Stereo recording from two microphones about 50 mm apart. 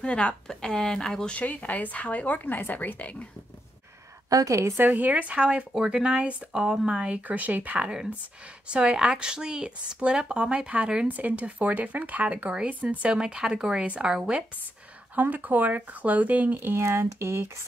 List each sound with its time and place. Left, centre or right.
0.0 s a woman's voice: left
1.3 s speech: left
4.5 s a woman's voice: right
4.9 s speech: right
5.3 s speech: right
8.6 s speech: right
15.1 s speech: right
16.5 s speech: right
16.8 s speech: right